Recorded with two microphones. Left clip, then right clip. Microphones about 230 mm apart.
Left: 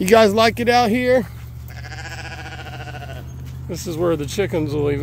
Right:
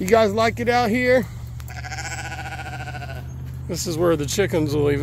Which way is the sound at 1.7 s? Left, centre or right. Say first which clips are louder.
Right 3 dB; right.